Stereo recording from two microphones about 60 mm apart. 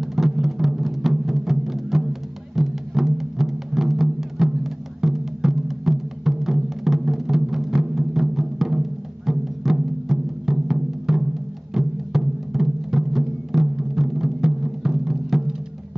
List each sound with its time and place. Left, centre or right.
0.0 s music: centre